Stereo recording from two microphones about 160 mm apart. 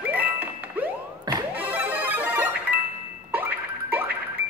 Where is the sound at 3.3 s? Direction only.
10° right (ahead or behind).